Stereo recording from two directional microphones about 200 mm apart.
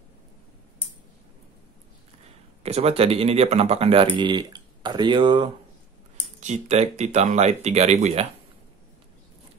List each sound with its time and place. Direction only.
2.6 s speech: 30° right (ahead or behind)